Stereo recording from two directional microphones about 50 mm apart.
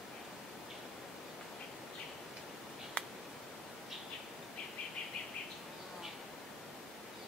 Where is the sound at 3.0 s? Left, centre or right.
Left.